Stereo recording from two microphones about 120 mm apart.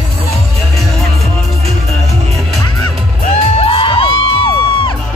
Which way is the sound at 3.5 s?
50° left (ahead or behind).